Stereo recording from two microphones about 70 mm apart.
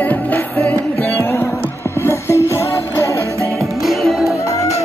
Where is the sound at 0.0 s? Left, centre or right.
Left.